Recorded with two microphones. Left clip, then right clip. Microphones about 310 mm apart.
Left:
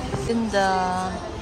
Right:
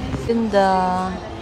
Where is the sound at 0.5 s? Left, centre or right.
Centre.